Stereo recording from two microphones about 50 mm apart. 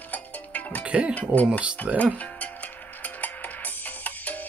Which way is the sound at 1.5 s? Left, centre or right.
Right.